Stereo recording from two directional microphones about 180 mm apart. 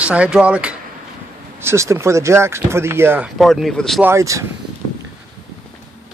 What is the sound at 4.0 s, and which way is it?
Speech, 15° right (ahead or behind).